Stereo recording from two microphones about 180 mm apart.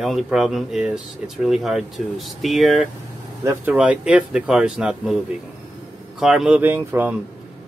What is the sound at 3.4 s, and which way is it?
Speech, 10° right (ahead or behind).